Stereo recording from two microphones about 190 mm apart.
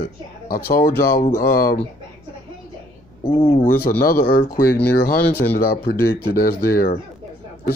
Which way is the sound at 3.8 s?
50° left (ahead or behind).